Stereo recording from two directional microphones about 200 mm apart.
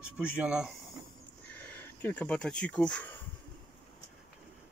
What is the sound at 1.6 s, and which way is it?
Speech, 10° left (ahead or behind).